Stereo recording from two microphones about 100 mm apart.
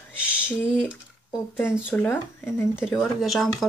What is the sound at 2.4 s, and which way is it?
Speech, 25° left (ahead or behind).